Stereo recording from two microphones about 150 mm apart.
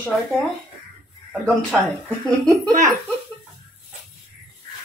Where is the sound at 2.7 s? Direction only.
20° right (ahead or behind).